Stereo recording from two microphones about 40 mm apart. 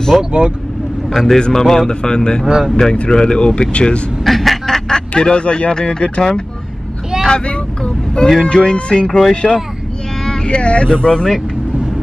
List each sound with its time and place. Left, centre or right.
0.2 s speech: right
1.1 s speech: centre
2.4 s speech: centre
2.7 s speech: centre; by 4.0 s left
4.2 s a sound: centre
5.1 s speech: left